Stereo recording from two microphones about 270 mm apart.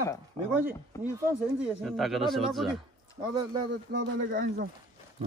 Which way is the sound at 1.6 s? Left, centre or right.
Centre.